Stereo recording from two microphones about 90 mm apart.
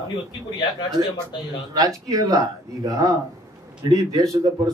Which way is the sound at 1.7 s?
40° right (ahead or behind).